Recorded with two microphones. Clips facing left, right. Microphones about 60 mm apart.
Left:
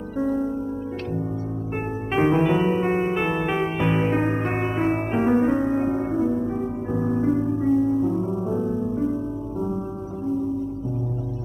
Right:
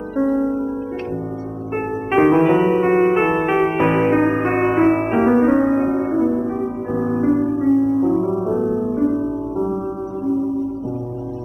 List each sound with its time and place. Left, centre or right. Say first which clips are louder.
0.2 s music: right 6 dB; right
2.1 s music: right 6 dB; right